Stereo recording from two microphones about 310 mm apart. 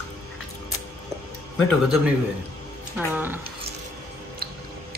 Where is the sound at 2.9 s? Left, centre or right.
Centre.